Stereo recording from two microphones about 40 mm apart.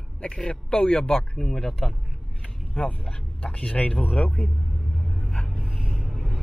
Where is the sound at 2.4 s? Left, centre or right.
Left.